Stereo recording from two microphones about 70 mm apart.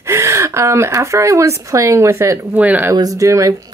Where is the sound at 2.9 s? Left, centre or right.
Right.